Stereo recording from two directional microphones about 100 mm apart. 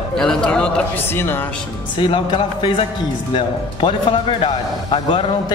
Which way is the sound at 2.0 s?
55° left (ahead or behind).